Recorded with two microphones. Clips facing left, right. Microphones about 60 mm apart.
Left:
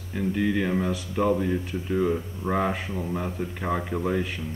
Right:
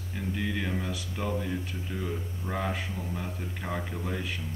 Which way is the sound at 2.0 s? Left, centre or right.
Left.